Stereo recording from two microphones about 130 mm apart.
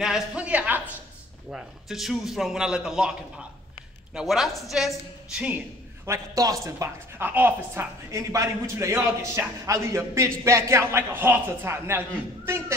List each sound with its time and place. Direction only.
0.0 s a woman's voice: 5° right (ahead or behind)
6.0 s a woman's voice: 25° right (ahead or behind)